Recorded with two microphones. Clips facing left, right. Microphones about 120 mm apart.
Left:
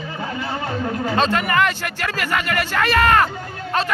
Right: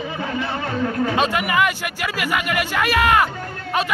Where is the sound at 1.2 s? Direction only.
10° right (ahead or behind).